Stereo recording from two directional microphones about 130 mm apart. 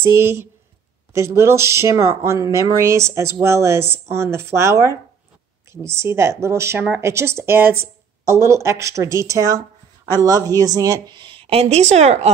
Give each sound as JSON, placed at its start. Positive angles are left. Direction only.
{"t": 0.0, "sound": "a woman's voice", "side_deg": -20}